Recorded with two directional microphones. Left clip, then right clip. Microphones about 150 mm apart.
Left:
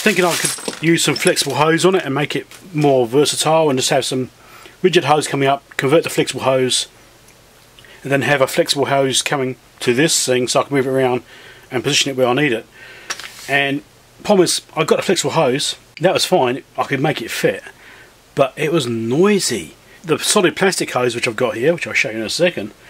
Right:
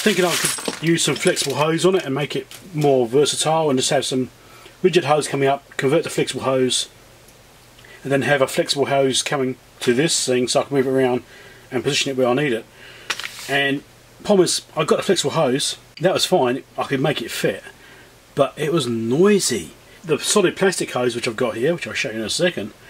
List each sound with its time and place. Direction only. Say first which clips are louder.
0.9 s speech: left 3 dB; 25° left (ahead or behind)
8.1 s speech: left 3 dB; 25° left (ahead or behind)